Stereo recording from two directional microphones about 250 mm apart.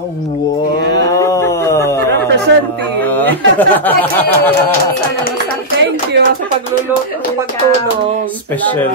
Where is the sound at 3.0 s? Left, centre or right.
Centre.